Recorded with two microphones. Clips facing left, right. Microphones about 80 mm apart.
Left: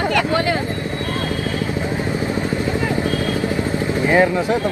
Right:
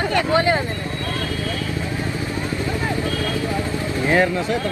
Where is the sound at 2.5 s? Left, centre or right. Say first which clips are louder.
Left 3 dB; left.